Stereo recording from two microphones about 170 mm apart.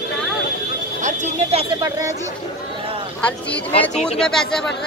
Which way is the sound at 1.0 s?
40° right (ahead or behind).